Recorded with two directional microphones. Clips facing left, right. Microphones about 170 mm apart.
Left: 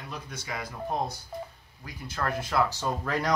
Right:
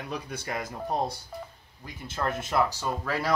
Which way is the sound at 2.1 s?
25° right (ahead or behind).